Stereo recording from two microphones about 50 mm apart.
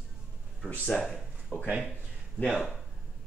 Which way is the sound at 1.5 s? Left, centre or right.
Left.